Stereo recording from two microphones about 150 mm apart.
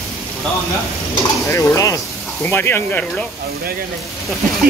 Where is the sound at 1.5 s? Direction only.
20° left (ahead or behind).